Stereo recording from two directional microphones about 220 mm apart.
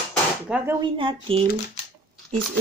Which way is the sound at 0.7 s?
20° right (ahead or behind).